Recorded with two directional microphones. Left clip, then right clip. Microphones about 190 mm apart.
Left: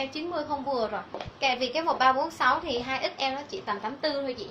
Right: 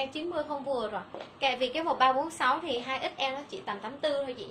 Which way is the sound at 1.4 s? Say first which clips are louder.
Left 2 dB; 25° right (ahead or behind).